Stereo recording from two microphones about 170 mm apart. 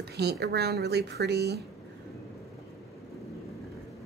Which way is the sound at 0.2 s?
70° right (ahead or behind).